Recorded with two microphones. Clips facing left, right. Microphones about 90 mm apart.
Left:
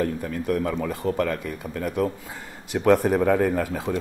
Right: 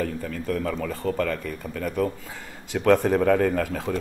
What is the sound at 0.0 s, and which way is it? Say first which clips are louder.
Speech: left 3 dB; 15° left (ahead or behind).